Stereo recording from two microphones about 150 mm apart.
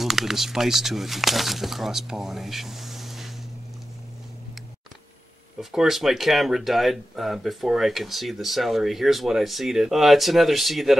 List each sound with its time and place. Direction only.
0.0 s speech: centre (ahead or behind)
5.6 s speech: centre (ahead or behind)